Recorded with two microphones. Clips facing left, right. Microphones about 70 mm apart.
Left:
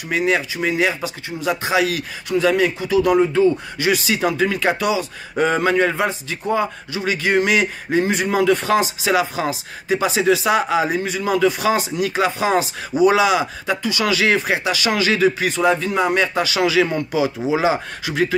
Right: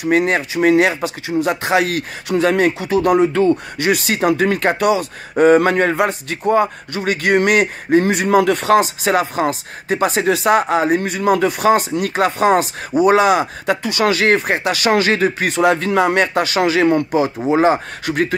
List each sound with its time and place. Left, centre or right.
0.0 s speech: right
16.2 s speech: right